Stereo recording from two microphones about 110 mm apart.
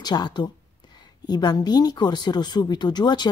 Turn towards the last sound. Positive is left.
turn(degrees=40)  # may be behind; listen again after turning